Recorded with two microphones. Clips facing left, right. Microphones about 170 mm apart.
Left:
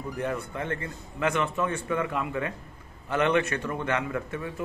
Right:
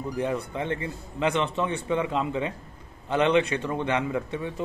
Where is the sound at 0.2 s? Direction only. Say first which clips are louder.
Right 3 dB; 20° right (ahead or behind).